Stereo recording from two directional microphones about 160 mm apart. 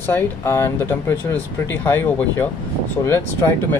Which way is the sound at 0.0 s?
15° left (ahead or behind).